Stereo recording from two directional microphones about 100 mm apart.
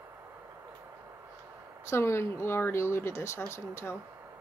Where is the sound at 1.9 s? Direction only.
25° left (ahead or behind).